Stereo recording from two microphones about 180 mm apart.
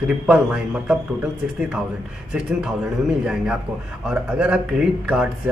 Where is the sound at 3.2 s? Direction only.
5° right (ahead or behind).